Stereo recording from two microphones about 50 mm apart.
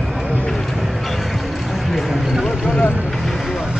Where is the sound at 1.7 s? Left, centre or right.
Centre.